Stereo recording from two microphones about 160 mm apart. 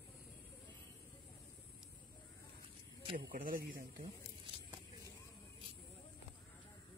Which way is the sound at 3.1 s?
60° right (ahead or behind).